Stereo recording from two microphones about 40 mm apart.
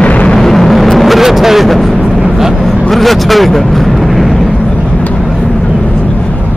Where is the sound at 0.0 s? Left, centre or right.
Left.